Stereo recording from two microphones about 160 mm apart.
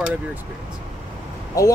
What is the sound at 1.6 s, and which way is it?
Speech, 20° left (ahead or behind).